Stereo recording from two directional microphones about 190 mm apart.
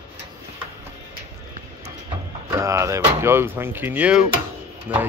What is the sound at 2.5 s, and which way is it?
Speech, 15° right (ahead or behind).